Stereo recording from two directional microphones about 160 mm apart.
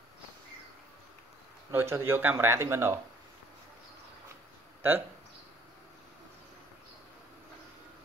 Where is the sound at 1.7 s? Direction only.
15° right (ahead or behind).